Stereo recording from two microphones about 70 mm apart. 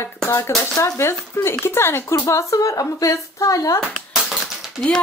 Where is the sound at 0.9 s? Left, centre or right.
Left.